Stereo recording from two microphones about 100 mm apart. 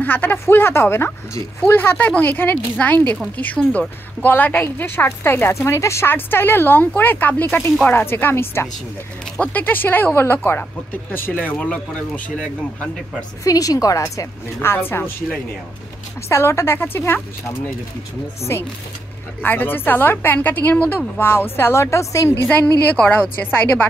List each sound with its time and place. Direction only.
0.0 s a woman's voice: 20° left (ahead or behind)
13.4 s a woman's voice: 35° left (ahead or behind)
19.4 s a woman's voice: 20° left (ahead or behind)
22.5 s speech: 20° left (ahead or behind)